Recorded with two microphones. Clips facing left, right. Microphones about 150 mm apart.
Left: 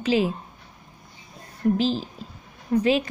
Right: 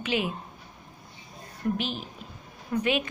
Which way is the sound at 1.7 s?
35° left (ahead or behind).